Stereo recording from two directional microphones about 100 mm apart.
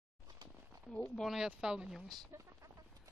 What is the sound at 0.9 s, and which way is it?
Speech, 10° left (ahead or behind).